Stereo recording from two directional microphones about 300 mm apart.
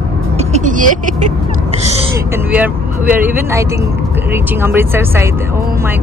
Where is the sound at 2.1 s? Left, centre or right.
Centre.